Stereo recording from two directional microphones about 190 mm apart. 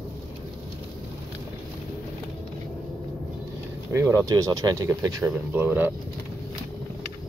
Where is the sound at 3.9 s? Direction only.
15° right (ahead or behind).